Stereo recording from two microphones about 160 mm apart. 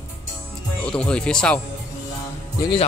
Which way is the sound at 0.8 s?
5° left (ahead or behind).